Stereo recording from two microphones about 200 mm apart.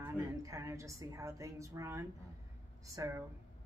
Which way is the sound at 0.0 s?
15° right (ahead or behind).